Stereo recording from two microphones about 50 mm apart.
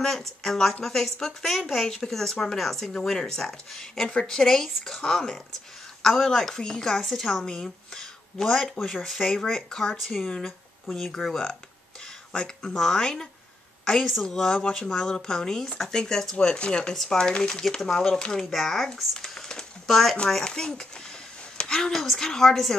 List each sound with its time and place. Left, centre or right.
0.0 s speech: centre
4.1 s speech: centre
16.3 s speech: left
16.9 s speech: centre
19.1 s a sound: centre
20.2 s speech: centre